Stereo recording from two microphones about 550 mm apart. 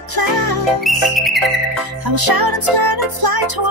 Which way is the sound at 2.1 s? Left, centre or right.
Right.